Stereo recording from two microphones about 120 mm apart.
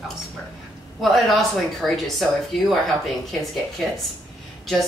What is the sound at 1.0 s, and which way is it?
Speech, centre (ahead or behind).